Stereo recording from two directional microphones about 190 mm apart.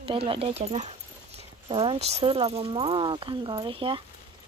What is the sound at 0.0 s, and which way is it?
Speech, 30° right (ahead or behind).